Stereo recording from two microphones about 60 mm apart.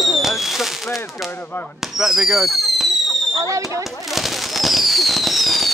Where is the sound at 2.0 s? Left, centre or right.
Centre.